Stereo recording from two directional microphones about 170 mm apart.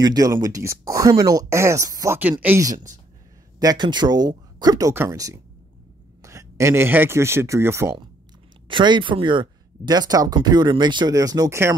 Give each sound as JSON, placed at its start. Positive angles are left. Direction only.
{"t": 0.0, "sound": "speech", "side_deg": -20}
{"t": 8.6, "sound": "speech", "side_deg": -30}